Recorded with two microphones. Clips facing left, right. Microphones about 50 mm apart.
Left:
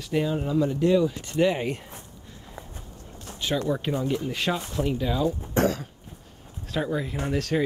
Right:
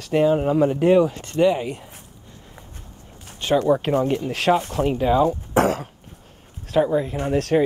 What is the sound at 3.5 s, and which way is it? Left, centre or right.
Speech, right.